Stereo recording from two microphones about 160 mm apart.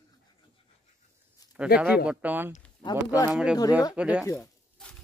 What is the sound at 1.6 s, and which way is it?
Speech, 5° right (ahead or behind).